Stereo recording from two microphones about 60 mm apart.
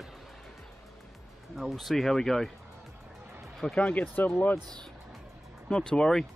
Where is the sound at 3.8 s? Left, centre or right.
Left.